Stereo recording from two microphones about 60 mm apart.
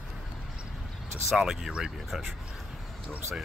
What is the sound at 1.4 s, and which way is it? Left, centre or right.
Speech, centre.